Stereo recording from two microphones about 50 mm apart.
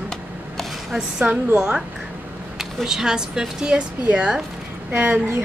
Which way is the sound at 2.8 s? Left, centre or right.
Centre.